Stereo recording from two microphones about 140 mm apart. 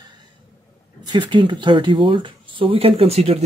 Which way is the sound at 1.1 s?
35° right (ahead or behind).